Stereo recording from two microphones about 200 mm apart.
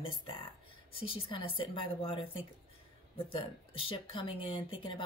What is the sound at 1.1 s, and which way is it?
Speech, 25° left (ahead or behind).